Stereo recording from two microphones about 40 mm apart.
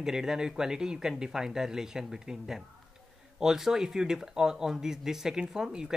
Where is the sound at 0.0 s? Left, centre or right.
Centre.